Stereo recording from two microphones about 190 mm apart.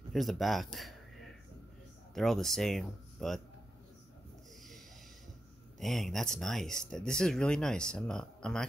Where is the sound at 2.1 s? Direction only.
Centre (ahead or behind).